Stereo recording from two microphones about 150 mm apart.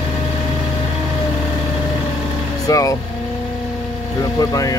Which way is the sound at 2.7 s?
20° left (ahead or behind).